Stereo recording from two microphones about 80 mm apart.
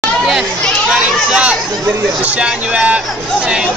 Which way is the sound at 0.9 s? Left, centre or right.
Centre.